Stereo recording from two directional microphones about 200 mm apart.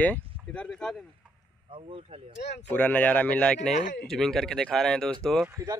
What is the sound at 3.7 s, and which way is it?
Speech, 40° left (ahead or behind).